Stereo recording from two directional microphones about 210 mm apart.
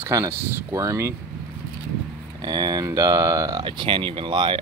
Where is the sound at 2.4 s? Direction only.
20° right (ahead or behind).